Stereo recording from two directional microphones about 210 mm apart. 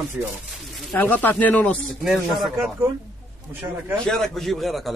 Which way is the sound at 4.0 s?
Centre (ahead or behind).